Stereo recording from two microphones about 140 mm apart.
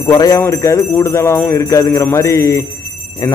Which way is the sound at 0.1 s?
25° left (ahead or behind).